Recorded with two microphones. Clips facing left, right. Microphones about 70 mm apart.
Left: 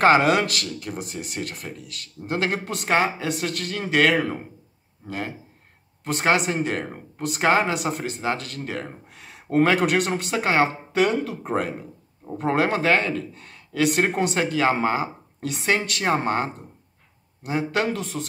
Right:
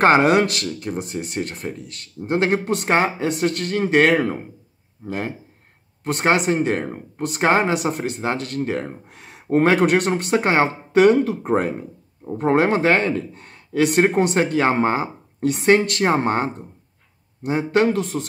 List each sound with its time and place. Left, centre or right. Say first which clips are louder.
0.0 s speech: right 3 dB; right
6.2 s speech: right 3 dB; right
7.7 s speech: right 4 dB; right
8.5 s speech: right 7 dB; right
9.1 s speech: right 3 dB; right
17.5 s speech: right 6 dB; right